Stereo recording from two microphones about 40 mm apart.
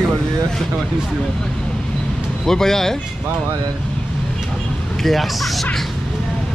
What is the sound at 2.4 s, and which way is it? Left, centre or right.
Speech, centre.